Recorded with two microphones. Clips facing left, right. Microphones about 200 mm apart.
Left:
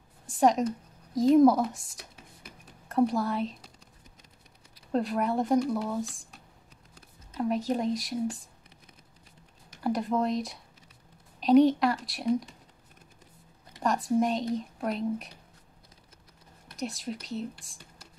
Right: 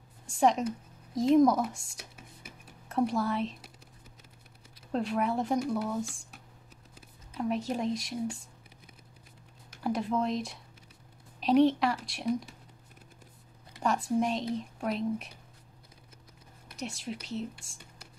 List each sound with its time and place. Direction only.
0.3 s speech: centre (ahead or behind)
4.9 s speech: centre (ahead or behind)
5.8 s speech: 20° left (ahead or behind)
7.0 s speech: centre (ahead or behind)
9.8 s speech: centre (ahead or behind)
13.8 s speech: centre (ahead or behind)
16.6 s speech: centre (ahead or behind)